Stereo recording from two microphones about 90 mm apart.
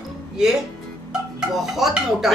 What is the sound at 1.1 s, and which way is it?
Speech, 5° right (ahead or behind).